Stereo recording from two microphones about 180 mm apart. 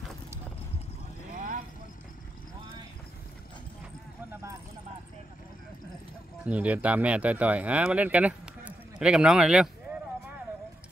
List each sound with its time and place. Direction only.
1.3 s vehicle: 50° right (ahead or behind)
4.3 s vehicle: 15° right (ahead or behind)
6.4 s speech: 10° right (ahead or behind)